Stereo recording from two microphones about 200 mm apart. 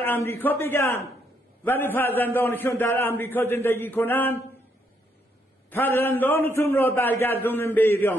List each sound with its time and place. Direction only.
0.0 s a man's voice: 10° left (ahead or behind)
5.7 s a man's voice: 10° left (ahead or behind)